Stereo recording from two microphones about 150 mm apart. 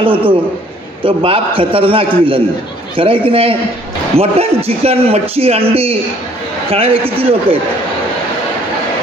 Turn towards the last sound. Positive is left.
turn(degrees=-40)  # may be behind; listen again after turning